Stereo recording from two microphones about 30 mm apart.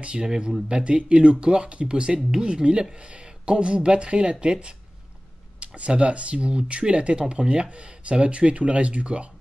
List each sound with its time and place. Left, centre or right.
0.0 s speech: right
5.8 s speech: right